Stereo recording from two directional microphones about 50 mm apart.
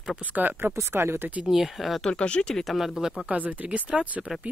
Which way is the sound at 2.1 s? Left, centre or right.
Left.